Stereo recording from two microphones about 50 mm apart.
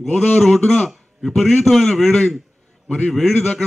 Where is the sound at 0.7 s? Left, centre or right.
Centre.